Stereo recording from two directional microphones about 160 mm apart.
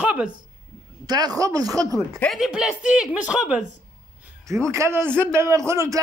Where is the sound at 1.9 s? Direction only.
10° left (ahead or behind).